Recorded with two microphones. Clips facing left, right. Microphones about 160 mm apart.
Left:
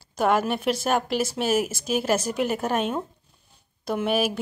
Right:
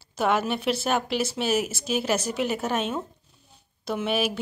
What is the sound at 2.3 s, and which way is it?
Speech, 50° left (ahead or behind).